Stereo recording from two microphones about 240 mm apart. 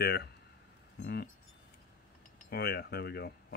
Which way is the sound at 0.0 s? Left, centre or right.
Left.